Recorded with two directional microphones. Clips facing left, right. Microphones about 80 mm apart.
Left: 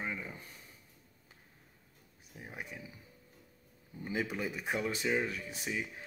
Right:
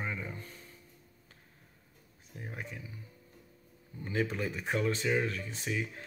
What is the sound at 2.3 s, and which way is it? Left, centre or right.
Speech, centre.